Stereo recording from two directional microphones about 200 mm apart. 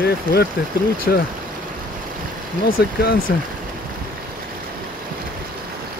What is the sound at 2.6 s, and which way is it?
Speech, 50° left (ahead or behind).